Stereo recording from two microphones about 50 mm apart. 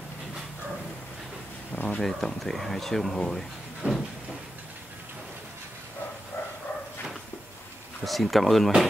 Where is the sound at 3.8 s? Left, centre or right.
Right.